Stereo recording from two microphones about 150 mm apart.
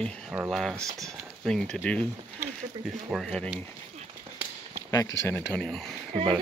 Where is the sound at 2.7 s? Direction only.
30° right (ahead or behind).